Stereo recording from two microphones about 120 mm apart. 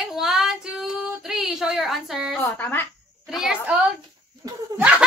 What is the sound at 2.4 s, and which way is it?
Speech, 15° left (ahead or behind).